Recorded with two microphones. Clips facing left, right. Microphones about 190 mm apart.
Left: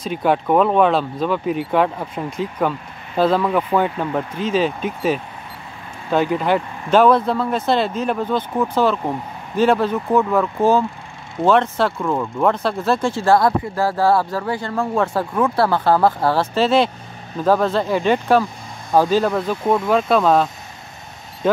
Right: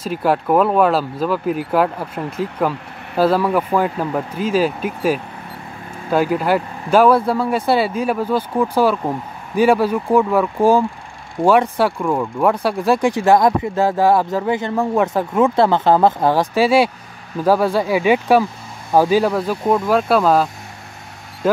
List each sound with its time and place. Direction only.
0.0 s speech: centre (ahead or behind)